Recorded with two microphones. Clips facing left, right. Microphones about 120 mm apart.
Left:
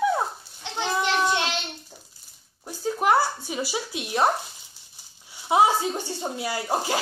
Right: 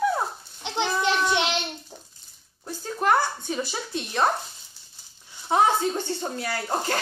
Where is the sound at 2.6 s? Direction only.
10° left (ahead or behind).